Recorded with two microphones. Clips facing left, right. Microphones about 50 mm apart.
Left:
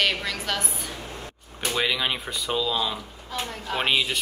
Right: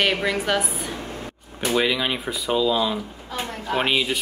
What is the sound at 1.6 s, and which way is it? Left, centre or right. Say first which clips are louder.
Speech: right 4 dB; centre.